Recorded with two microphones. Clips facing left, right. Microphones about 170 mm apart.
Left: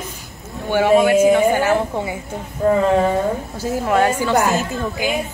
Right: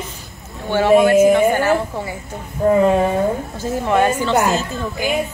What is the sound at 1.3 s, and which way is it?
Speech, 15° left (ahead or behind).